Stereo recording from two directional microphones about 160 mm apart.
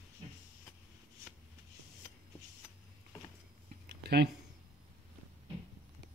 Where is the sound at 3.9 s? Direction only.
90° right.